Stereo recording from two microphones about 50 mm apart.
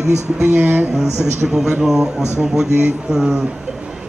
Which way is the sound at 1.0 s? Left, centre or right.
Centre.